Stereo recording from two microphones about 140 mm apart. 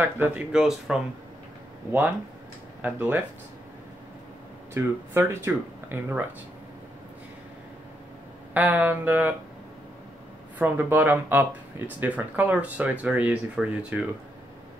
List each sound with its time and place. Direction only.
0.0 s speech: 15° right (ahead or behind)
1.9 s speech: 15° right (ahead or behind)
4.7 s speech: 15° right (ahead or behind)
8.5 s speech: 10° right (ahead or behind)
10.6 s speech: 15° right (ahead or behind)